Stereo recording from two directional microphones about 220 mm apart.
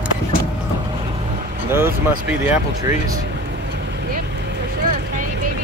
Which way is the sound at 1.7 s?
10° right (ahead or behind).